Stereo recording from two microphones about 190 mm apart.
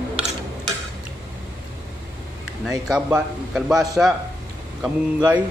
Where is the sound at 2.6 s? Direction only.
5° right (ahead or behind).